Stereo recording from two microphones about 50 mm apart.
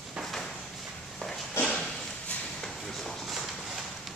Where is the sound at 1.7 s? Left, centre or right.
Centre.